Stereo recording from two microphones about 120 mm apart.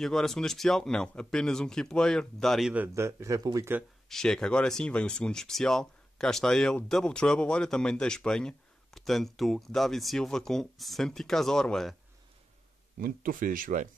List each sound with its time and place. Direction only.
0.0 s speech: 5° left (ahead or behind)
2.9 s speech: 25° right (ahead or behind)
4.1 s speech: 5° left (ahead or behind)
13.7 s speech: 90° right